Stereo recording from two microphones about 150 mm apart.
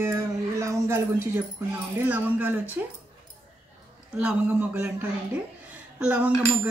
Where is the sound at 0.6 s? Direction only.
20° right (ahead or behind).